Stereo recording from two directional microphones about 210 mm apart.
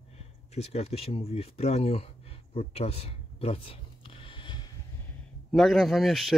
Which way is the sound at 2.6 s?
30° left (ahead or behind).